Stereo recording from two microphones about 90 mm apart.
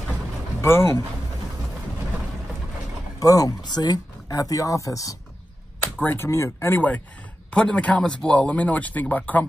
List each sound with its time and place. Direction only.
0.6 s speech: 30° left (ahead or behind)
3.2 s speech: 40° left (ahead or behind)
6.0 s speech: 30° left (ahead or behind)
7.5 s speech: 10° left (ahead or behind)